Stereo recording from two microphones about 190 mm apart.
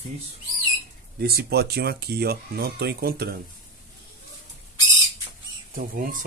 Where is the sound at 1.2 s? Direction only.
55° right (ahead or behind).